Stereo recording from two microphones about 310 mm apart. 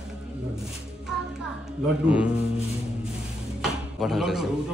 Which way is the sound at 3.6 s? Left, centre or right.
Centre.